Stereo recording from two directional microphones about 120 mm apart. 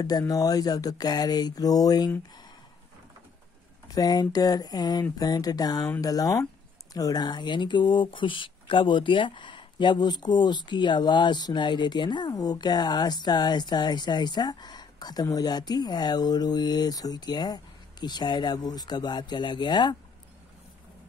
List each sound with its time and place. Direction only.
0.3 s speech: 30° left (ahead or behind)
3.9 s speech: 30° left (ahead or behind)